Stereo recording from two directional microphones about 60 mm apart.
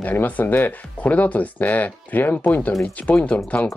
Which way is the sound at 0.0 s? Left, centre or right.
Left.